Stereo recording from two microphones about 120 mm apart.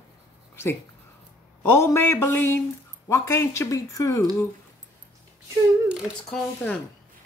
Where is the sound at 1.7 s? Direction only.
20° left (ahead or behind).